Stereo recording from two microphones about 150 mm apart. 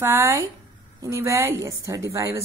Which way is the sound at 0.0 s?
20° right (ahead or behind).